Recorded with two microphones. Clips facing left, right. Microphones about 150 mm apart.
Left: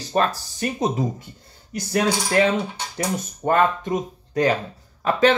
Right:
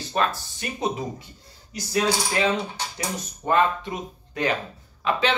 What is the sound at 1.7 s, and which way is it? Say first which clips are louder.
Speech: left 2 dB; 55° left (ahead or behind).